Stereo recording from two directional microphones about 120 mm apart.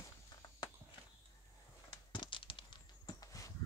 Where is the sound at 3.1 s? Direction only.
30° left (ahead or behind).